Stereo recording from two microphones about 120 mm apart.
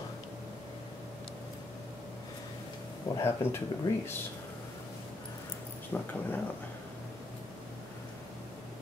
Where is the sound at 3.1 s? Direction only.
20° left (ahead or behind).